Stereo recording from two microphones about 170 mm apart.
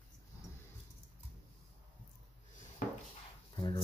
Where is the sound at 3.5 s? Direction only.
20° left (ahead or behind).